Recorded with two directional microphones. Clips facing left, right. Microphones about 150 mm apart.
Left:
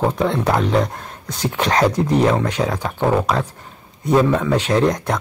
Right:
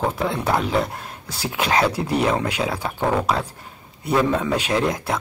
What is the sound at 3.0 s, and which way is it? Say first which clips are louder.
Speech: left 4 dB; 15° left (ahead or behind).